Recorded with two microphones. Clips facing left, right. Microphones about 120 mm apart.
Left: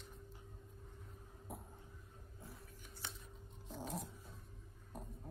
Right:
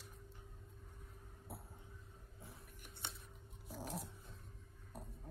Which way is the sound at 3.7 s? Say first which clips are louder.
Left 1 dB; 5° right (ahead or behind).